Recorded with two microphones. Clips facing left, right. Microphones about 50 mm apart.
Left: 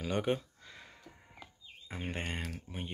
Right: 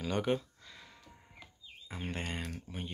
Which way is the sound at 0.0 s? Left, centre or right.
Centre.